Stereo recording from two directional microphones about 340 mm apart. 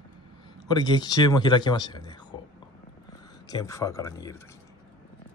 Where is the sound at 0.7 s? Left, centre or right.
Centre.